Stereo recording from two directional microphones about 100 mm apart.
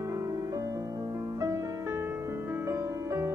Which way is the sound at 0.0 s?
30° right (ahead or behind).